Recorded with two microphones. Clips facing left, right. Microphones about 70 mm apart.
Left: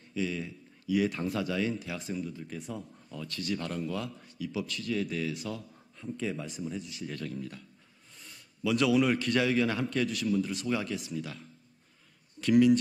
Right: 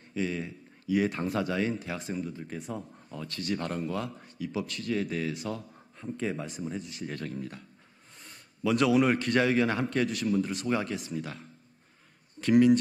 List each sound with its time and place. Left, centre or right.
0.1 s speech: right